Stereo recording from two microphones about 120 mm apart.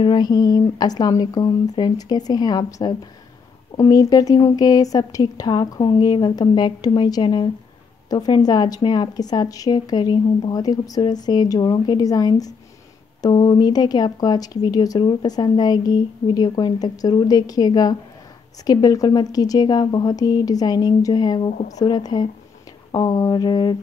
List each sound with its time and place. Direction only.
0.0 s speech: 40° left (ahead or behind)